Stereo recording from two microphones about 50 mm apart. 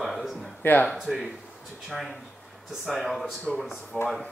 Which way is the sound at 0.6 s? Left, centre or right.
Left.